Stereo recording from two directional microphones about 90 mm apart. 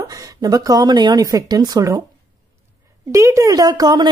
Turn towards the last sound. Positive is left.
turn(degrees=-50)  # may be behind; listen again after turning